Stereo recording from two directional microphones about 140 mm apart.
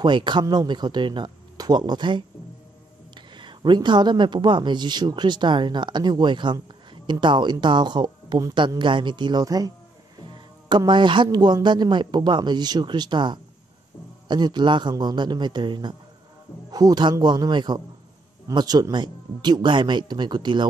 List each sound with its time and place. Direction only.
0.0 s speech: 35° right (ahead or behind)
10.7 s speech: 35° right (ahead or behind)